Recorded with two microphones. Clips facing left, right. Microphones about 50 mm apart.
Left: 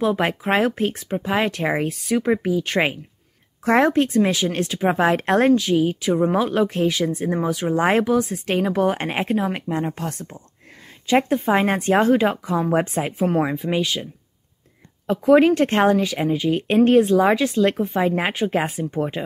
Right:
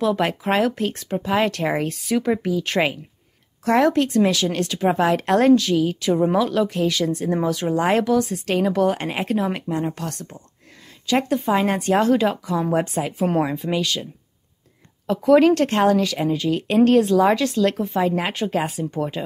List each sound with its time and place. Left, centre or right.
0.0 s speech: centre
3.6 s a woman's voice: left
6.3 s a woman's voice: left
6.9 s speech: centre
7.7 s a woman's voice: left
13.4 s speech: centre
15.0 s a woman's voice: left